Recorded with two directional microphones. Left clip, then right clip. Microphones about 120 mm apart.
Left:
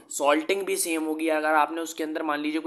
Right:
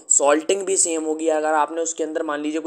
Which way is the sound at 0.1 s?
35° right (ahead or behind).